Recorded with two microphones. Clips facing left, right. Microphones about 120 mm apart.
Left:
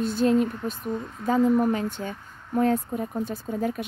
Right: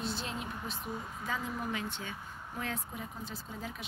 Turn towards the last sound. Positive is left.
turn(degrees=55)  # may be behind; listen again after turning